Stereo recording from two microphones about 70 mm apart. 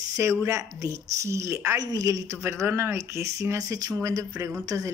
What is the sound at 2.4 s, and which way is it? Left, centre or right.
A woman's voice, right.